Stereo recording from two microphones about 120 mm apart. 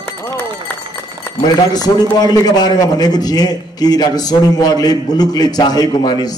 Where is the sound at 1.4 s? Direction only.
35° left (ahead or behind).